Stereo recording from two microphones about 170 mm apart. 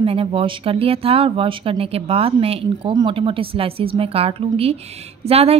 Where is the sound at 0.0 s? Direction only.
35° right (ahead or behind).